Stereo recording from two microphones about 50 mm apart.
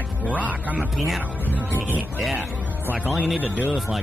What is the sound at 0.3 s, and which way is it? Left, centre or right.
Speech, right.